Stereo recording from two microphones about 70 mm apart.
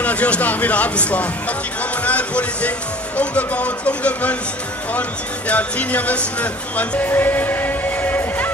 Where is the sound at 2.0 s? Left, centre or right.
Centre.